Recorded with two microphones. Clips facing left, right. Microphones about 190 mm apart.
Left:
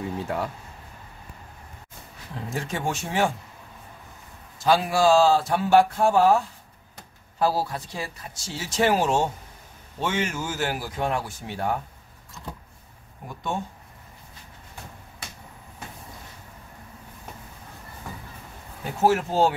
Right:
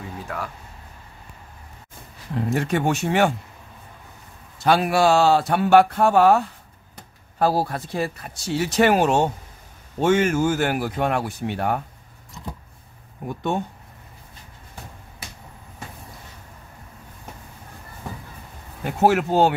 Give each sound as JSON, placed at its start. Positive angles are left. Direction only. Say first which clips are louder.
{"t": 0.2, "sound": "a sound", "louder": "left 2 dB", "side_deg": 25}
{"t": 2.5, "sound": "speech", "louder": "right 6 dB", "side_deg": -65}
{"t": 4.6, "sound": "speech", "louder": "right 3 dB", "side_deg": -65}
{"t": 7.3, "sound": "speech", "louder": "right 3 dB", "side_deg": -55}
{"t": 9.9, "sound": "speech", "louder": "right 9 dB", "side_deg": -50}
{"t": 18.9, "sound": "speech", "louder": "right 3 dB", "side_deg": -65}